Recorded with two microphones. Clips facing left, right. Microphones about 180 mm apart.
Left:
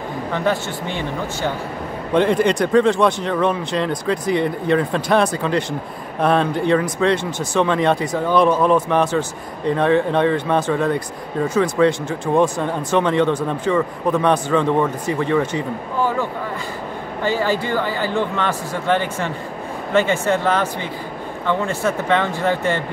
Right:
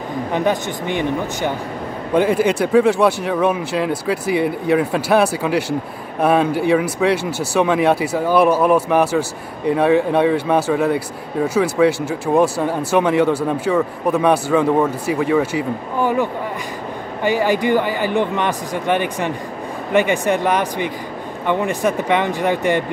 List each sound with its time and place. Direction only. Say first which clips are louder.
0.3 s speech: right 2 dB; 15° right (ahead or behind)